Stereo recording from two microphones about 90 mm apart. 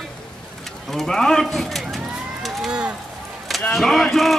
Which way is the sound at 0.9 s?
5° left (ahead or behind).